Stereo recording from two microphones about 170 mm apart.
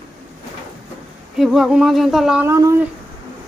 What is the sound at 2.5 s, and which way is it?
Speech, 15° right (ahead or behind).